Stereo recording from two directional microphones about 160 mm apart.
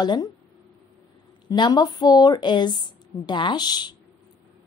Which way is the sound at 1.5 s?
25° left (ahead or behind).